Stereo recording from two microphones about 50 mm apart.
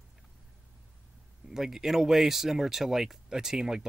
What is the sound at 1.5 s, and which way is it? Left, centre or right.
Speech, centre.